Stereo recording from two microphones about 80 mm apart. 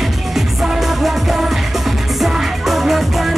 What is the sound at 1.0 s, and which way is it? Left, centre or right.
Music, centre.